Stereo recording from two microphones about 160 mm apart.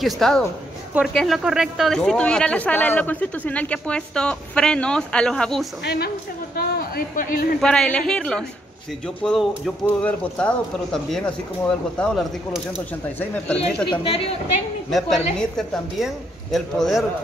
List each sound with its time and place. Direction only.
0.0 s speech: centre (ahead or behind)
5.9 s speech: 85° left; by 7.4 s 70° left (ahead or behind)
7.6 s speech: 5° left (ahead or behind)
13.8 s a woman's voice: 35° left (ahead or behind)
14.9 s speech: centre (ahead or behind)